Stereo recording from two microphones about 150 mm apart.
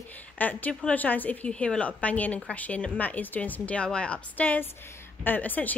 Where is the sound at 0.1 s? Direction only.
10° left (ahead or behind).